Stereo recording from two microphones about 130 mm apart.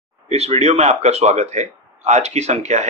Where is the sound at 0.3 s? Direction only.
55° right (ahead or behind).